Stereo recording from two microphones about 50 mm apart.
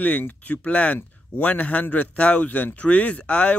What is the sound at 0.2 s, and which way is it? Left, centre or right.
A man's voice, left.